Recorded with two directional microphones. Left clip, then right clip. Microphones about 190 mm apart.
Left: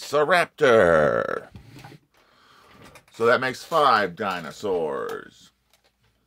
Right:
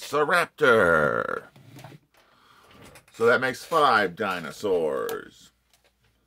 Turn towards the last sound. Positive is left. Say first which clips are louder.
# right 1 dB
turn(degrees=15)  # may be behind; listen again after turning